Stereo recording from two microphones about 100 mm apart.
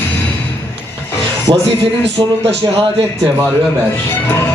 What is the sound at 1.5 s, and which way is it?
Speech, 50° right (ahead or behind).